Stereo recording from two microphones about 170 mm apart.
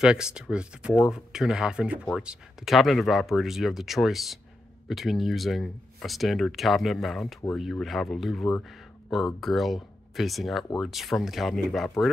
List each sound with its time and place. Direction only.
0.0 s speech: 5° right (ahead or behind)